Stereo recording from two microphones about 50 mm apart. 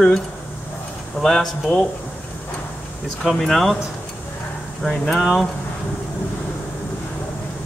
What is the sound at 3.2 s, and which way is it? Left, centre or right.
Speech, centre.